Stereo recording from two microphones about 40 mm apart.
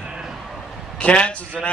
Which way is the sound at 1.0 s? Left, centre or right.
Left.